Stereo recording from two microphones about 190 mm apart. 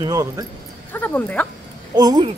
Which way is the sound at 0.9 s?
10° left (ahead or behind).